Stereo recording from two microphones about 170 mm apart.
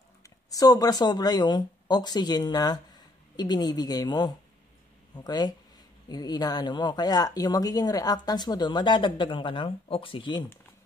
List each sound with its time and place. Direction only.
0.2 s speech: 20° left (ahead or behind)